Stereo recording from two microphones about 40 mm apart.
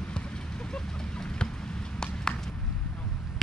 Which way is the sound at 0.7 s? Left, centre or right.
Centre.